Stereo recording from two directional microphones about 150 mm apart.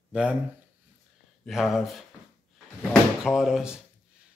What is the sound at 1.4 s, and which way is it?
Speech, centre (ahead or behind).